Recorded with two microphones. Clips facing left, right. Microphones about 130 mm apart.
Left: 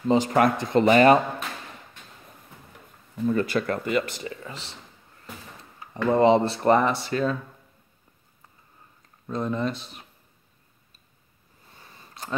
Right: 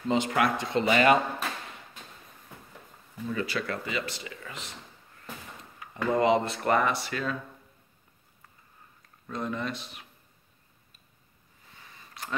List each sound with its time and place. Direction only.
0.1 s speech: 35° left (ahead or behind)
3.3 s speech: 50° left (ahead or behind)
4.3 s speech: 30° left (ahead or behind)
5.8 s speech: 30° left (ahead or behind)
9.3 s speech: 30° left (ahead or behind)
11.7 s a sound: 35° left (ahead or behind)